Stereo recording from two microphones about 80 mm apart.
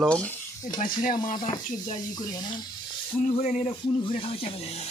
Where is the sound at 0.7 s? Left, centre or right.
Left.